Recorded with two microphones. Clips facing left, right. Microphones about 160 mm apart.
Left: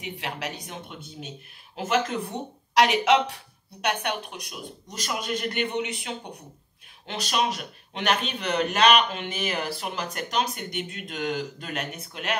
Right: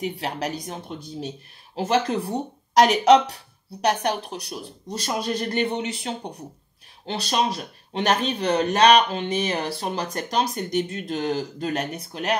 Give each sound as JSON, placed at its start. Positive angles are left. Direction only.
{"t": 0.0, "sound": "speech", "side_deg": -40}